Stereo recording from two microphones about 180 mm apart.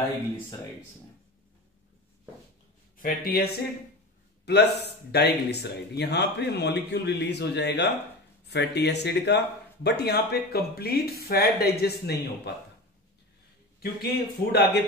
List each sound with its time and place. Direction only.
3.0 s speech: 55° left (ahead or behind)
4.5 s speech: 65° left (ahead or behind)
14.1 s speech: 65° left (ahead or behind)